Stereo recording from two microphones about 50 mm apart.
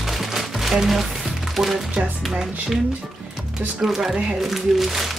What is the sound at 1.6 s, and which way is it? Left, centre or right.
Speech, centre.